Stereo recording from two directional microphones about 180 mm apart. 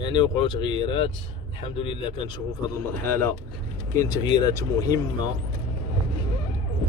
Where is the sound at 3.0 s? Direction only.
10° left (ahead or behind).